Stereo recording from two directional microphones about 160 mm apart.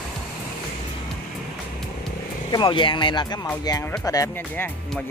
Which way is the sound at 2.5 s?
30° left (ahead or behind).